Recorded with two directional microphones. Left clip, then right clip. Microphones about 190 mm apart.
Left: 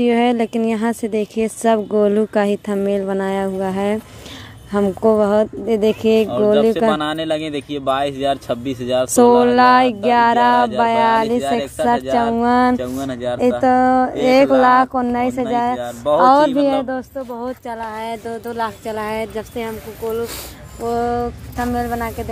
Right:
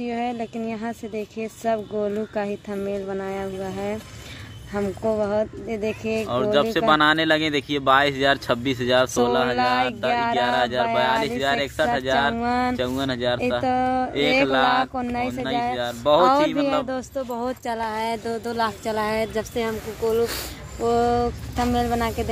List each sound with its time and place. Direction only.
0.0 s speech: 50° left (ahead or behind)
6.2 s speech: centre (ahead or behind)
9.6 s speech: 40° left (ahead or behind)
11.1 s speech: centre (ahead or behind)
12.4 s speech: 30° left (ahead or behind)
12.7 s speech: 5° right (ahead or behind)
13.6 s speech: 30° left (ahead or behind)
15.8 s speech: centre (ahead or behind)
17.3 s speech: centre (ahead or behind)